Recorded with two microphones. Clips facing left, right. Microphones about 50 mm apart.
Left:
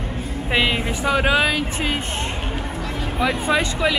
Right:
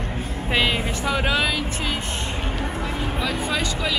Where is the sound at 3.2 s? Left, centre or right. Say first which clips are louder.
Left 7 dB; left.